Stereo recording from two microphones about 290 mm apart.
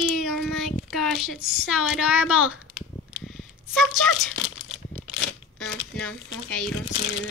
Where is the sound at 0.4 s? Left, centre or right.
Centre.